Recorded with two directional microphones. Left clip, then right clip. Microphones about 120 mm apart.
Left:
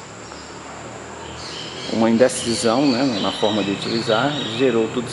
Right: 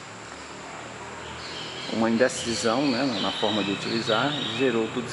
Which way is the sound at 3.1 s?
20° right (ahead or behind).